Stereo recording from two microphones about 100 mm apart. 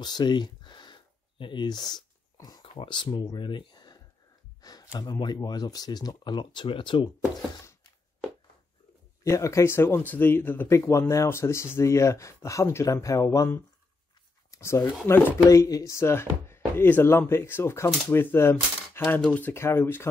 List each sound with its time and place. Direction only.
0.0 s a sound: 45° left (ahead or behind)
1.4 s speech: 50° left (ahead or behind)
2.6 s speech: 60° left (ahead or behind)
4.6 s gasp: 40° left (ahead or behind)
4.9 s speech: 40° left (ahead or behind); by 7.1 s 60° left (ahead or behind)
9.2 s speech: 30° left (ahead or behind)
14.5 s speech: 25° left (ahead or behind)